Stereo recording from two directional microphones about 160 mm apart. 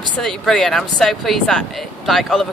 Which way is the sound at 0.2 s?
5° left (ahead or behind).